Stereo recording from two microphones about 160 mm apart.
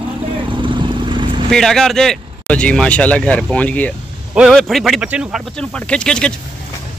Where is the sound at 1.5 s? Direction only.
5° left (ahead or behind).